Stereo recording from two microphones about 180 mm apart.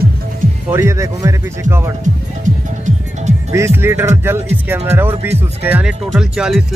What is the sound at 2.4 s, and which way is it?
Music, 40° right (ahead or behind).